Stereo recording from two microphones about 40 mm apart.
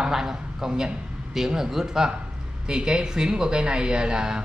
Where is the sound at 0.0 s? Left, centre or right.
Centre.